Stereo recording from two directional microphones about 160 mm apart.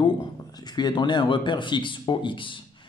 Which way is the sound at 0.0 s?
25° left (ahead or behind).